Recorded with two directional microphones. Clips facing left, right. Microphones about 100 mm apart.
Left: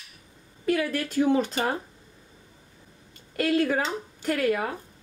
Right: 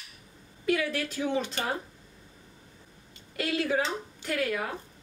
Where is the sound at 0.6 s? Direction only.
45° left (ahead or behind).